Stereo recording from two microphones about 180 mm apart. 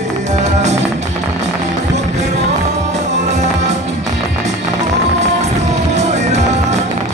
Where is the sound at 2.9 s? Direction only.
40° right (ahead or behind).